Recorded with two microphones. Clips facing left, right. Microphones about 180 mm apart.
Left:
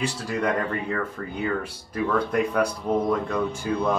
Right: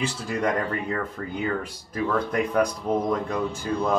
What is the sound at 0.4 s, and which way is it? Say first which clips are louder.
Speech: even; 5° right (ahead or behind).